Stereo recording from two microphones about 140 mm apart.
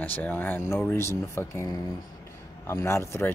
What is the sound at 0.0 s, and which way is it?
Speech, 10° left (ahead or behind).